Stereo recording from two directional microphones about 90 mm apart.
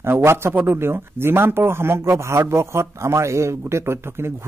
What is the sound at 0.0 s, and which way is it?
A man's voice, 30° right (ahead or behind).